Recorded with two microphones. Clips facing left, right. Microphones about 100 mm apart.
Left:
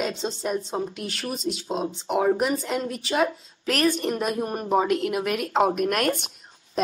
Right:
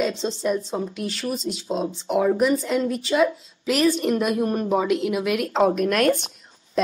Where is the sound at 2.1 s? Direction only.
45° left (ahead or behind).